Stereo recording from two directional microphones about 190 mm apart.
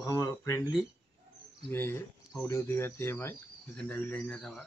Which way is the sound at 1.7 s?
10° left (ahead or behind).